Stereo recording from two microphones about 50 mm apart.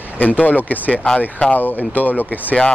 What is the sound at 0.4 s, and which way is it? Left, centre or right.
Speech, left.